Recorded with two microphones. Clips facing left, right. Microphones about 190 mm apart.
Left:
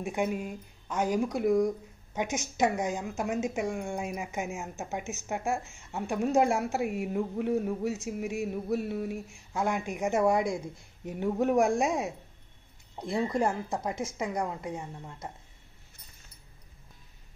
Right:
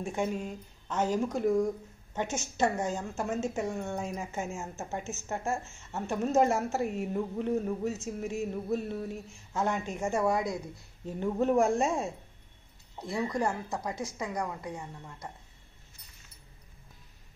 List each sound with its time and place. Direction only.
0.0 s speech: 15° left (ahead or behind)
11.1 s a woman's voice: 15° left (ahead or behind)